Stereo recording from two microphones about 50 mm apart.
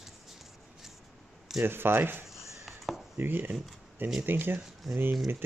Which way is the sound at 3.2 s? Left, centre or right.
Right.